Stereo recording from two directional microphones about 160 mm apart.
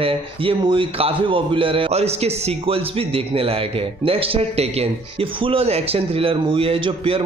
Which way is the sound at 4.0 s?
35° right (ahead or behind).